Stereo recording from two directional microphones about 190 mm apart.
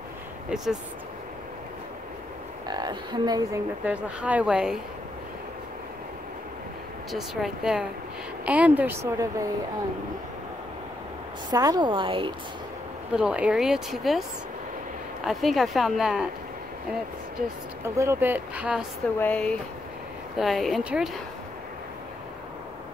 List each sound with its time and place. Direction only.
2.7 s a woman's voice: 20° right (ahead or behind)
3.8 s speech: 5° right (ahead or behind)
7.1 s speech: centre (ahead or behind)
11.5 s a woman's voice: 20° right (ahead or behind)
13.1 s speech: 5° right (ahead or behind)
15.2 s speech: centre (ahead or behind)
17.8 s speech: 15° right (ahead or behind)
19.1 s speech: 5° left (ahead or behind)